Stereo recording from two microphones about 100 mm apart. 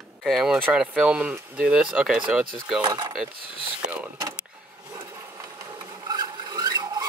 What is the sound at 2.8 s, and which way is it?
Speech, 45° right (ahead or behind).